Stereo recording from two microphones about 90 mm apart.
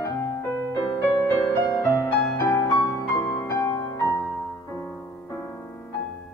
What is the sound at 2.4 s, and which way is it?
Music, 40° left (ahead or behind).